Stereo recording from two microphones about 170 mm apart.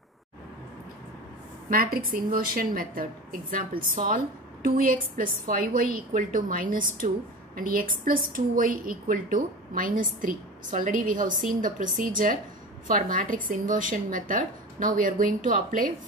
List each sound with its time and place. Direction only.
1.7 s a woman's voice: 60° right (ahead or behind)